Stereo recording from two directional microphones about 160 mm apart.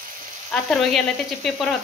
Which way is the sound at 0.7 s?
Centre (ahead or behind).